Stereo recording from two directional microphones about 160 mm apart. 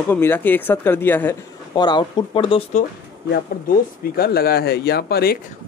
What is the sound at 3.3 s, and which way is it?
Speech, 70° left (ahead or behind).